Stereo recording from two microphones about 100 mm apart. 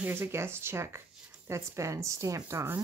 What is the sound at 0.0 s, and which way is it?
Speech, 25° right (ahead or behind).